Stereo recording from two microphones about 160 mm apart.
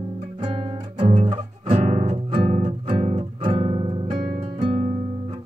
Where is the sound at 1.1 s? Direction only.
45° right (ahead or behind).